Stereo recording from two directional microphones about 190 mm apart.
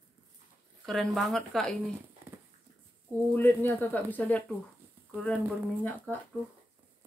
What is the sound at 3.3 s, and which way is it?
Speech, 10° left (ahead or behind).